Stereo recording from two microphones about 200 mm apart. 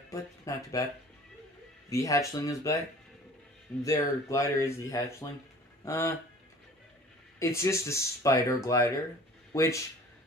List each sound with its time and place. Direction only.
0.1 s speech: 15° left (ahead or behind)
1.9 s speech: 15° left (ahead or behind)
3.8 s speech: 15° left (ahead or behind)
7.3 s speech: 15° left (ahead or behind)